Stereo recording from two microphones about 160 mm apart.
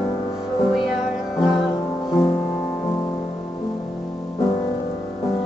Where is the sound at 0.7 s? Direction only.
5° right (ahead or behind).